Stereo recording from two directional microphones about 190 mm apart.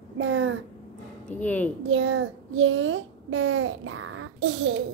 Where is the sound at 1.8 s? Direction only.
90° right.